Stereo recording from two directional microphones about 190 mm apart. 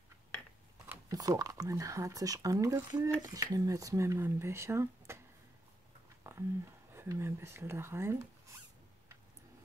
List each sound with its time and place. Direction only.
0.8 s speech: 15° right (ahead or behind)
6.2 s a sound: 15° right (ahead or behind)
6.9 s speech: 15° right (ahead or behind)